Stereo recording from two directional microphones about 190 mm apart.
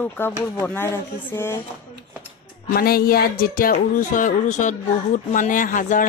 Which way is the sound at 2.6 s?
55° left (ahead or behind).